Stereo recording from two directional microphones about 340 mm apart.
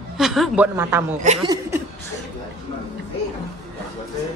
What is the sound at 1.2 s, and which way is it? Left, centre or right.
Speech, centre.